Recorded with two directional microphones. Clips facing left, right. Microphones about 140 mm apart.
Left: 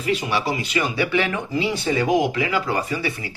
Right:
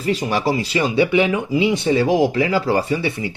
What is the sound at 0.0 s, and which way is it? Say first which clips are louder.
Speech: right 3 dB; 40° right (ahead or behind).